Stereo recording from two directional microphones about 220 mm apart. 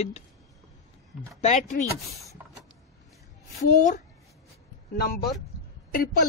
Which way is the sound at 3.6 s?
40° left (ahead or behind).